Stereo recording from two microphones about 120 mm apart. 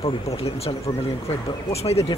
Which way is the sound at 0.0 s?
55° left (ahead or behind).